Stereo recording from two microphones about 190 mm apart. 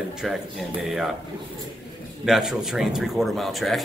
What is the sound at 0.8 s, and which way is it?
Speech, centre (ahead or behind).